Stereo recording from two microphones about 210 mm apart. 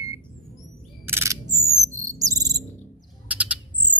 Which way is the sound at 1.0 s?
10° right (ahead or behind).